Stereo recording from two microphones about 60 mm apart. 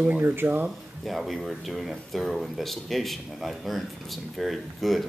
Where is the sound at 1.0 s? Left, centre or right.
Centre.